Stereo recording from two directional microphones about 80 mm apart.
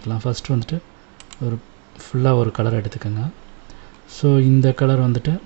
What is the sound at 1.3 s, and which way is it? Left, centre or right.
Computer keyboard, centre.